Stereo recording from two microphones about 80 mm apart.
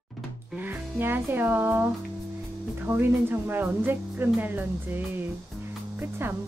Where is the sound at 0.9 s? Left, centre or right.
Right.